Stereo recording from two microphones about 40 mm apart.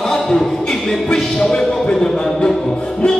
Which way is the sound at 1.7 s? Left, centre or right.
Centre.